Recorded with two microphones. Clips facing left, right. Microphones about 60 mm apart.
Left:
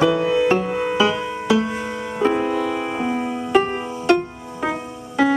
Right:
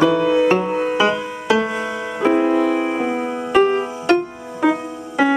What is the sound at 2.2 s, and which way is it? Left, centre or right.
Music, centre.